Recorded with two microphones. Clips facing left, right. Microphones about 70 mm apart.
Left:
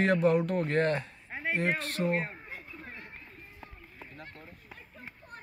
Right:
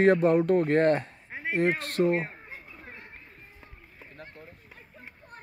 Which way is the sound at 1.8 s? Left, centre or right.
Right.